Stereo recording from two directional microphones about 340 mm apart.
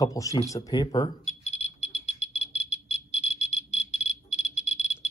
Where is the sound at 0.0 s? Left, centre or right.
Centre.